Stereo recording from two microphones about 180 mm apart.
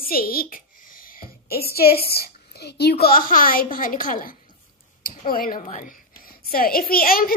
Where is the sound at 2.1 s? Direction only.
60° left (ahead or behind).